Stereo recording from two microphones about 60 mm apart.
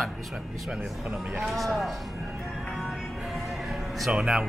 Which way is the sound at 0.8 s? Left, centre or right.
Centre.